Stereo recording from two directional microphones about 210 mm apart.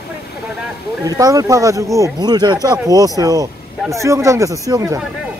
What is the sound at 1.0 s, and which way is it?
Speech, 15° right (ahead or behind).